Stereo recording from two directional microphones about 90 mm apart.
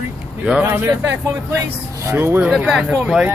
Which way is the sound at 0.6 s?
25° right (ahead or behind).